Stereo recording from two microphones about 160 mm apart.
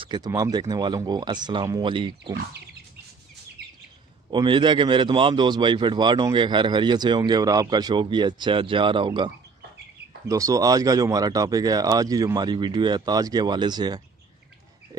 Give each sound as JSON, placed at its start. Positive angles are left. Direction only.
{"t": 0.0, "sound": "a man's voice", "side_deg": -30}
{"t": 4.3, "sound": "a man's voice", "side_deg": -30}